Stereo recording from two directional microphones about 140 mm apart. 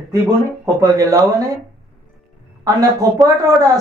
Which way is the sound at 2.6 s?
25° right (ahead or behind).